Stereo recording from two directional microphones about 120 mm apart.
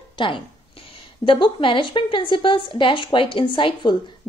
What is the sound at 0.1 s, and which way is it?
A woman's voice, 45° left (ahead or behind).